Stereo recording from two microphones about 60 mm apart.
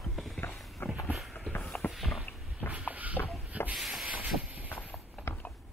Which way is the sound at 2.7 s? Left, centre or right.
Right.